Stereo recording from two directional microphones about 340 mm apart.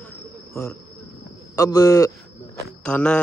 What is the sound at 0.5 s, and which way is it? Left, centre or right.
A man's voice, centre.